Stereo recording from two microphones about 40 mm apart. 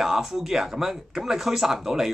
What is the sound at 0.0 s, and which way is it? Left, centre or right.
Speech, centre.